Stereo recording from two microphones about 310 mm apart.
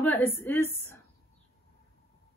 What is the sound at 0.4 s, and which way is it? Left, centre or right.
Speech, centre.